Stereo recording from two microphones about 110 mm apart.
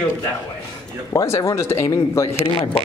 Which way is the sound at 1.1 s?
25° left (ahead or behind).